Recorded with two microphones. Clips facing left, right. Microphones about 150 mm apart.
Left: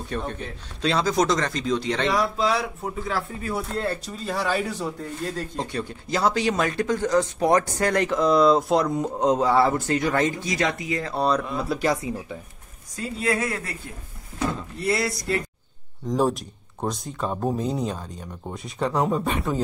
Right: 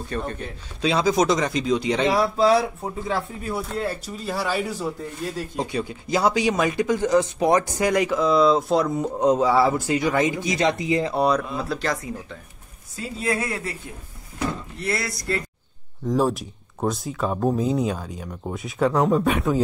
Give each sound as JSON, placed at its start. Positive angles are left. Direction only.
{"t": 0.1, "sound": "speech", "side_deg": 0}
{"t": 2.0, "sound": "speech", "side_deg": -35}
{"t": 3.1, "sound": "speech", "side_deg": -20}
{"t": 3.5, "sound": "speech", "side_deg": -5}
{"t": 7.9, "sound": "speech", "side_deg": -5}
{"t": 12.9, "sound": "speech", "side_deg": -25}
{"t": 14.9, "sound": "speech", "side_deg": 5}
{"t": 16.1, "sound": "speech", "side_deg": 0}